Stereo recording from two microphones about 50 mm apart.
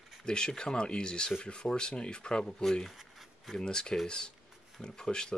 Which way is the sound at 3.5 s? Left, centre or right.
Centre.